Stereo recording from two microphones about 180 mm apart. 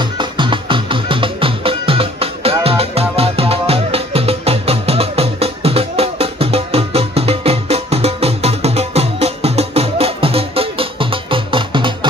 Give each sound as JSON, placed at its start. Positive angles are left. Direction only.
{"t": 0.0, "sound": "music", "side_deg": -25}